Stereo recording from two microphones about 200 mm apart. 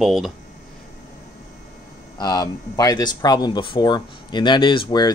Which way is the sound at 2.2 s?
20° left (ahead or behind).